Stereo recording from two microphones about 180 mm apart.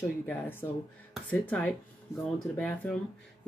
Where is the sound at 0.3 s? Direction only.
10° left (ahead or behind).